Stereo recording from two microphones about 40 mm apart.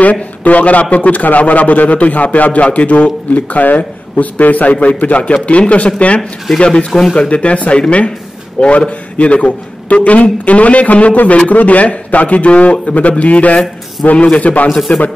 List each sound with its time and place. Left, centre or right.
0.0 s a man's voice: left
14.7 s speech: centre